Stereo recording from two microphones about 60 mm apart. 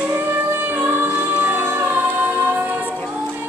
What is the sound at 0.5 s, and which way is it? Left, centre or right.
Music, right.